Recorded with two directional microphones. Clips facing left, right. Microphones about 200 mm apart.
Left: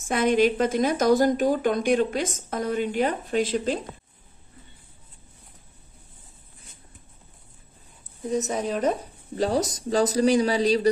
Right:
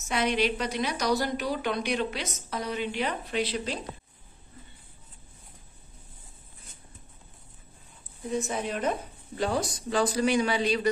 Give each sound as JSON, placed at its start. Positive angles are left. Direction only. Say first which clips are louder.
{"t": 0.0, "sound": "a woman's voice", "louder": "left 6 dB", "side_deg": 50}
{"t": 8.3, "sound": "a man's voice", "louder": "left 4 dB", "side_deg": 40}